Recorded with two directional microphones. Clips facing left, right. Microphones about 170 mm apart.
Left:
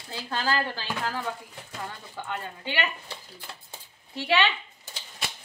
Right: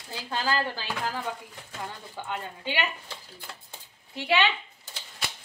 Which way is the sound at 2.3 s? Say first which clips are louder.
Even; 15° right (ahead or behind).